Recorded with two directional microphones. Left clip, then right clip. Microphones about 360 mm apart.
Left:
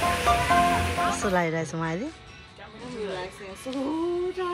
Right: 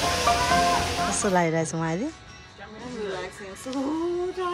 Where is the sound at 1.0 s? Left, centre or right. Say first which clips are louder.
Right 2 dB; centre.